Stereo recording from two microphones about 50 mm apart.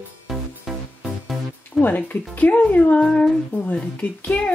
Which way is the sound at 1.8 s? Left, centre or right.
Left.